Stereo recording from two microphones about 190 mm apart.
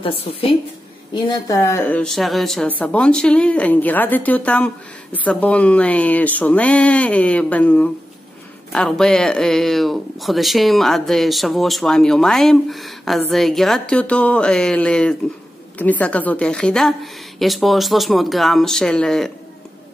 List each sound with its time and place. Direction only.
0.0 s a woman's voice: 30° left (ahead or behind)
1.1 s speech: 20° left (ahead or behind); by 19.3 s centre (ahead or behind)